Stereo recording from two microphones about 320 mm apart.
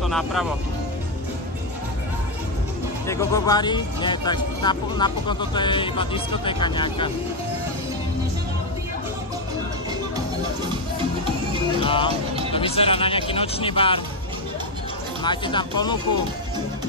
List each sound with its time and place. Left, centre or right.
0.0 s speech: centre
3.1 s speech: centre
10.7 s music: centre
11.8 s speech: centre
15.2 s speech: centre